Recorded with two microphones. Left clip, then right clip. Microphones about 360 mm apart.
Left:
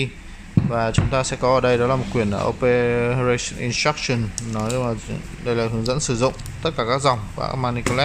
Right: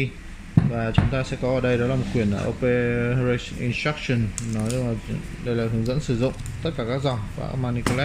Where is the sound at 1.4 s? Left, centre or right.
Left.